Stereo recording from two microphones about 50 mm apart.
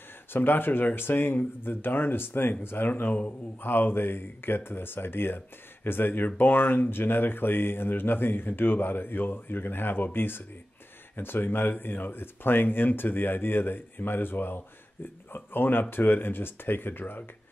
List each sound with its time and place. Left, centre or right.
0.3 s speech: left
2.9 s speech: left